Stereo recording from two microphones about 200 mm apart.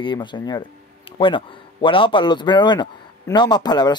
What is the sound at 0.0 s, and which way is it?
Speech, 25° left (ahead or behind).